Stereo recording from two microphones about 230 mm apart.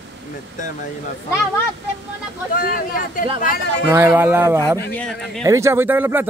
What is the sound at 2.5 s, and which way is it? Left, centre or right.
Speech, left.